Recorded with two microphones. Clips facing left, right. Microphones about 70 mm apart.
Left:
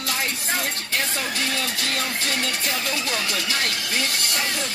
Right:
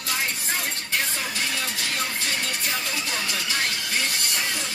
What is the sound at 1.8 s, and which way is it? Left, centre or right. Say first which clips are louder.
Speech: left 2 dB; left.